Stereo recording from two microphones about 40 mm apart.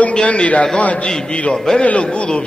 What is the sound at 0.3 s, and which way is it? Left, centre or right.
Speech, left.